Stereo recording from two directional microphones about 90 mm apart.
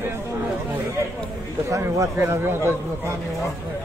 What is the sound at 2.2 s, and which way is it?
Speech, 25° right (ahead or behind).